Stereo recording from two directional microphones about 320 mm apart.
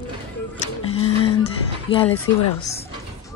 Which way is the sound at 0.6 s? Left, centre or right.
Centre.